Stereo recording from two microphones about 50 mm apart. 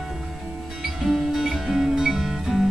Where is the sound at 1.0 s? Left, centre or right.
Centre.